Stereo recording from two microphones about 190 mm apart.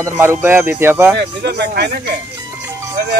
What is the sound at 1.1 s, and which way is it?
Speech, 60° right (ahead or behind).